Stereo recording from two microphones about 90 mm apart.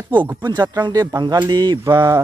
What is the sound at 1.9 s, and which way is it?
Speech, 40° right (ahead or behind).